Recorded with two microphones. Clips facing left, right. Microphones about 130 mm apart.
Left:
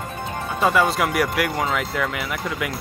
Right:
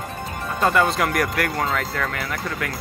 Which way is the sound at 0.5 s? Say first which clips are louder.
Even; 5° left (ahead or behind).